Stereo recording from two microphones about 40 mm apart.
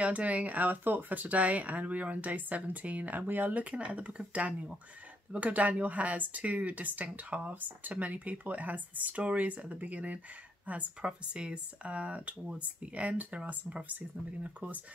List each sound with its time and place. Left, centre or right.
0.0 s speech: right
11.0 s speech: right